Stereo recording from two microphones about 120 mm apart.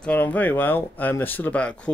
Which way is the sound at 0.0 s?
15° left (ahead or behind).